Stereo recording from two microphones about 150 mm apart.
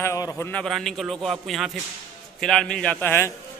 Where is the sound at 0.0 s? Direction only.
20° left (ahead or behind).